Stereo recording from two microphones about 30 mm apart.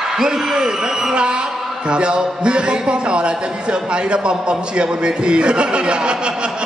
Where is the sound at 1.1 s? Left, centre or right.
Right.